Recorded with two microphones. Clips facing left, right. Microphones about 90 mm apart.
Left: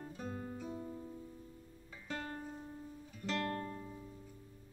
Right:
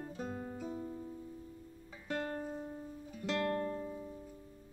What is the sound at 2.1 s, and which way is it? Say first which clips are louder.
Music: right 5 dB; 25° right (ahead or behind).